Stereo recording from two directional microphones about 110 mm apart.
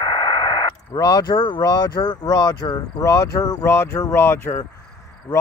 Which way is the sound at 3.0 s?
30° left (ahead or behind).